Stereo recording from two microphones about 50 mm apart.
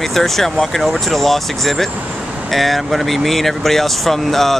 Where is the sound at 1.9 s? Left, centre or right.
Right.